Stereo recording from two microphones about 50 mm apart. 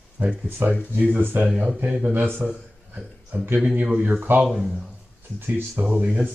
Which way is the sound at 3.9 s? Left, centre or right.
Right.